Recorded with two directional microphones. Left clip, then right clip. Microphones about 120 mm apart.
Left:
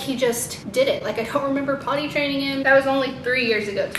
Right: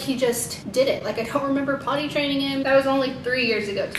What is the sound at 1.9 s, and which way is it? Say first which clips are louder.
Speech: left 2 dB; 10° right (ahead or behind).